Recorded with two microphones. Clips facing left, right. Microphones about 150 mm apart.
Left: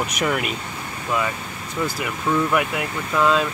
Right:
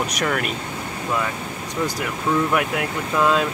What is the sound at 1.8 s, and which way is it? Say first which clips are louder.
Speech: even; centre (ahead or behind).